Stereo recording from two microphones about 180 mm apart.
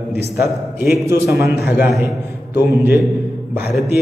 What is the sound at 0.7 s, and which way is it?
A man's voice, 15° right (ahead or behind).